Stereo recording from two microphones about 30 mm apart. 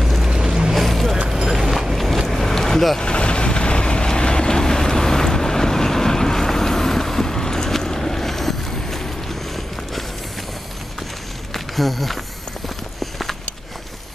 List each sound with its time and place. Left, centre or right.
0.3 s boat: right
0.7 s vehicle: centre
1.5 s a sound: centre
3.0 s vehicle: left; by 9.0 s centre
11.5 s a sound: centre
12.6 s clip-clop: centre